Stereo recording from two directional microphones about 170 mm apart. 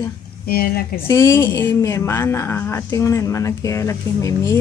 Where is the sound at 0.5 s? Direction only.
60° left (ahead or behind).